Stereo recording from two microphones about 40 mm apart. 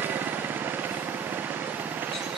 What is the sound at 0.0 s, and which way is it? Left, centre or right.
Vehicle, right.